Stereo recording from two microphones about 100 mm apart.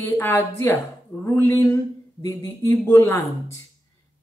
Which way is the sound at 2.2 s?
35° left (ahead or behind).